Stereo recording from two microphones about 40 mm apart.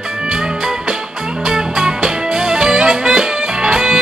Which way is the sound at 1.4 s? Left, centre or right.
Centre.